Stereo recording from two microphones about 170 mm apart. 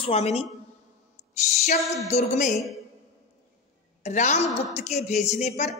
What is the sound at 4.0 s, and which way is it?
A woman's voice, 45° left (ahead or behind).